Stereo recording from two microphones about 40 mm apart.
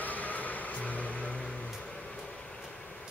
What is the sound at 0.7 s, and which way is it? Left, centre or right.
Vehicle, left.